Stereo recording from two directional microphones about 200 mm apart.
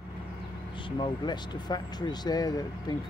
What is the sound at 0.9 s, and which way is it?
Speech, 25° left (ahead or behind).